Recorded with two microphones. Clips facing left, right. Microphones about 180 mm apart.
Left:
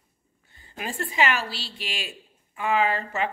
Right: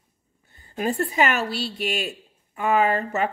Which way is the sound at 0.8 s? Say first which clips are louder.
Right 4 dB; 40° right (ahead or behind).